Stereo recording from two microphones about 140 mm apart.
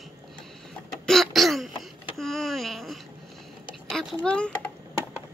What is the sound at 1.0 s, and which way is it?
Throat clearing, centre (ahead or behind).